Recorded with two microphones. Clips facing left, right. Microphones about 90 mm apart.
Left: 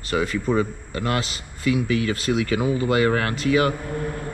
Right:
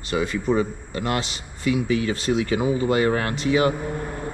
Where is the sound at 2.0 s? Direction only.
65° left (ahead or behind).